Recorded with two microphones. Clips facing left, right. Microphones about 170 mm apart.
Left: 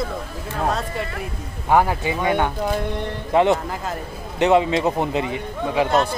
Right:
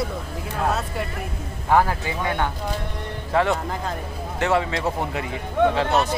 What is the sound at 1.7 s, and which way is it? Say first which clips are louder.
A man's voice: left 2 dB; 15° left (ahead or behind).